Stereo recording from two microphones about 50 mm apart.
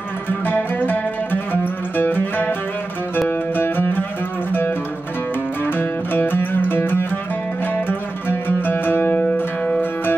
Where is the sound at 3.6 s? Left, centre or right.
Left.